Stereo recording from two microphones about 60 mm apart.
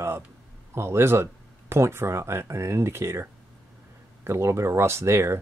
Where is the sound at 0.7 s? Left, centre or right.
Right.